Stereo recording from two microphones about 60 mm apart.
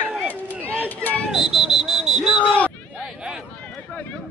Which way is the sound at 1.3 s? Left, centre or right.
Centre.